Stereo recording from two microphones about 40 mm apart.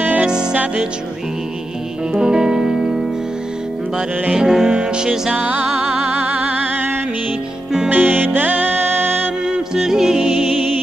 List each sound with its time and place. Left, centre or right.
0.0 s music: right
0.3 s music: right
2.1 s music: centre
4.4 s music: centre
5.3 s music: right
7.9 s music: right
9.8 s music: centre